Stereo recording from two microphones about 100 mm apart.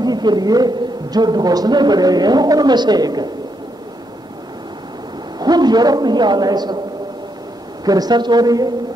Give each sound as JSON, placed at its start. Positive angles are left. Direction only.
{"t": 0.0, "sound": "a man's voice", "side_deg": -45}
{"t": 5.4, "sound": "a man's voice", "side_deg": -45}
{"t": 7.8, "sound": "a woman's voice", "side_deg": -40}